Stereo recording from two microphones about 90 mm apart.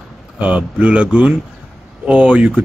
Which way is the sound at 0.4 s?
15° right (ahead or behind).